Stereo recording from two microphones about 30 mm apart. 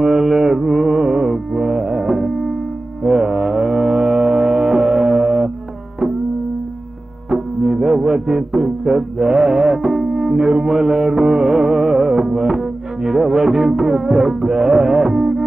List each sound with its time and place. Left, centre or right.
0.0 s music: centre
7.2 s music: centre